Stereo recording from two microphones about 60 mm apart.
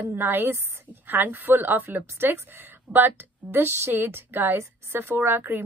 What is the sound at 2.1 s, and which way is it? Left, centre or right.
A woman's voice, right.